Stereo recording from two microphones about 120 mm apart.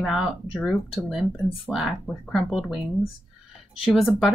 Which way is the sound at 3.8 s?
5° right (ahead or behind).